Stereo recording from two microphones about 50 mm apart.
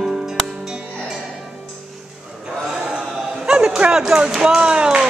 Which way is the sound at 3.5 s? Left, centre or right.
Right.